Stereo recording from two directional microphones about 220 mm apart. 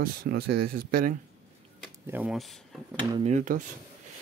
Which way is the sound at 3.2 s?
35° right (ahead or behind).